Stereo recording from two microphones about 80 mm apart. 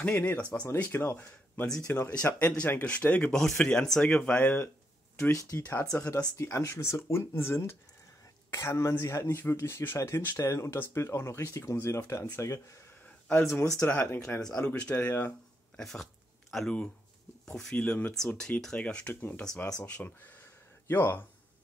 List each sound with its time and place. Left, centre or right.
0.0 s speech: left
3.3 s speech: centre
5.5 s speech: left
13.8 s speech: centre
14.9 s speech: left
15.8 s a sound: centre
17.5 s speech: centre
20.8 s speech: left